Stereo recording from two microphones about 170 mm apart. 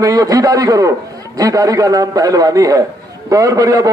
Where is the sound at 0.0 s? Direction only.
20° right (ahead or behind).